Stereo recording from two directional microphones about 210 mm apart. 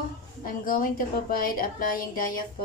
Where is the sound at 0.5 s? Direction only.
40° left (ahead or behind).